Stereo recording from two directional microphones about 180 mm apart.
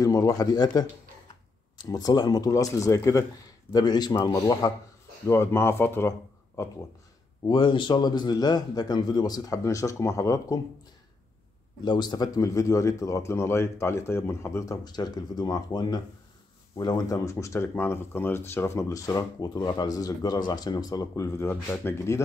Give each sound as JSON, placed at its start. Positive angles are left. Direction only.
{"t": 0.0, "sound": "speech", "side_deg": 20}
{"t": 7.4, "sound": "speech", "side_deg": 25}
{"t": 11.8, "sound": "speech", "side_deg": 25}